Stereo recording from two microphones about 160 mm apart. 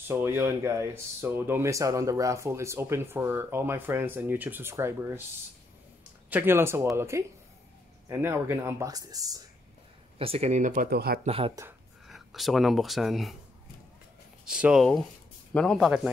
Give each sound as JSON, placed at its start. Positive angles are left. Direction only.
{"t": 0.1, "sound": "speech", "side_deg": -15}
{"t": 6.3, "sound": "speech", "side_deg": -15}
{"t": 10.1, "sound": "speech", "side_deg": -40}
{"t": 10.9, "sound": "speech", "side_deg": -80}
{"t": 11.2, "sound": "speech", "side_deg": -35}
{"t": 12.1, "sound": "speech", "side_deg": 0}
{"t": 14.4, "sound": "speech", "side_deg": -5}